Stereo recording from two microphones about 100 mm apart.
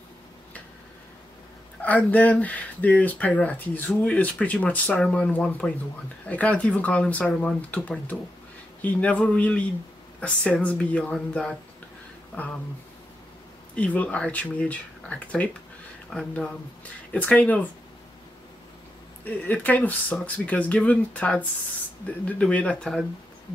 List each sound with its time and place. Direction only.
1.8 s speech: 15° left (ahead or behind)
13.7 s speech: 15° left (ahead or behind)
19.2 s speech: 15° left (ahead or behind)